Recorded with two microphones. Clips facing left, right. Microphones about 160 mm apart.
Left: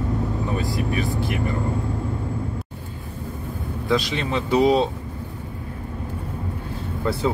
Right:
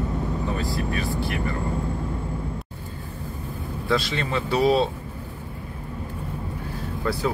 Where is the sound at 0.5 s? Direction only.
20° left (ahead or behind).